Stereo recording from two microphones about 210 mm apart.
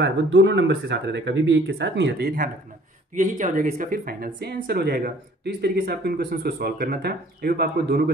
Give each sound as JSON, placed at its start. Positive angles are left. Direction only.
{"t": 0.0, "sound": "speech", "side_deg": -55}